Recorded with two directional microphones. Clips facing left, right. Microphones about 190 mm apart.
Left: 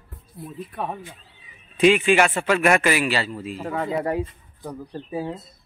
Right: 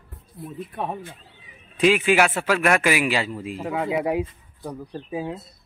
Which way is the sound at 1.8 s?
5° right (ahead or behind).